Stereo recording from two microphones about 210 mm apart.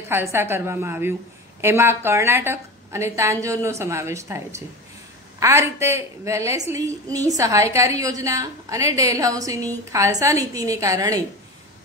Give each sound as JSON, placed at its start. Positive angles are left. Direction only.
{"t": 0.1, "sound": "a woman's voice", "side_deg": -10}